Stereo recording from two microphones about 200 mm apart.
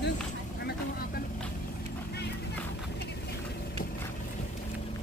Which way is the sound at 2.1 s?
55° left (ahead or behind).